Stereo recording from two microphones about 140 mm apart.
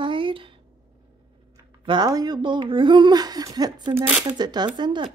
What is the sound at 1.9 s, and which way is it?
Speech, 30° right (ahead or behind).